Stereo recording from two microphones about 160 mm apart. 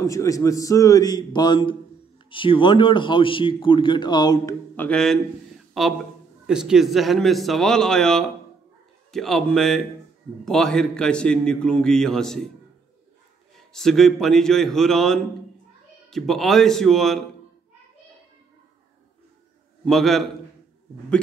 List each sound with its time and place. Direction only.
0.0 s a man's voice: 20° left (ahead or behind)
4.7 s a man's voice: 5° left (ahead or behind)
13.6 s a man's voice: centre (ahead or behind)
19.8 s a man's voice: centre (ahead or behind)